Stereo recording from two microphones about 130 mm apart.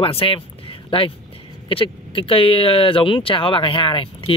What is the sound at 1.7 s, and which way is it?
Speech, 45° left (ahead or behind).